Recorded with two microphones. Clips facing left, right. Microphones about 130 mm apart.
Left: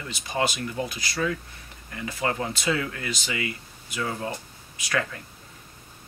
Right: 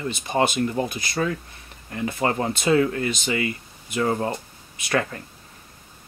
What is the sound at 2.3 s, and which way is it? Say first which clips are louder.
Speech: right 5 dB; 40° right (ahead or behind).